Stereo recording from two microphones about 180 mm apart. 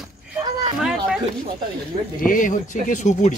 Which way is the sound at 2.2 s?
50° left (ahead or behind).